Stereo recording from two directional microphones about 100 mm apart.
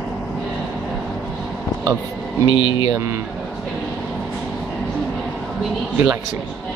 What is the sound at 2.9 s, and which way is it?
Speech, 25° right (ahead or behind).